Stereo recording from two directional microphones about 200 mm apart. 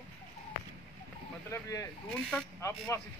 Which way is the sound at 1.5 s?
15° left (ahead or behind).